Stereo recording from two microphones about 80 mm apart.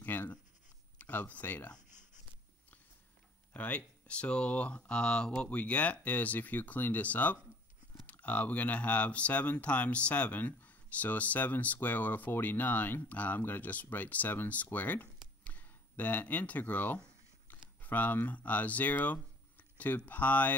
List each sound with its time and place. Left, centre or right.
0.0 s writing: left
0.9 s speech: left
3.5 s speech: centre